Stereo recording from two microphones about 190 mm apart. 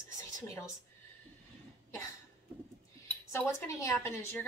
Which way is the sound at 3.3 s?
15° left (ahead or behind).